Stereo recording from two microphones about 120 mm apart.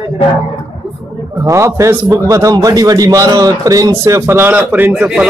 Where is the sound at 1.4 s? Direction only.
25° right (ahead or behind).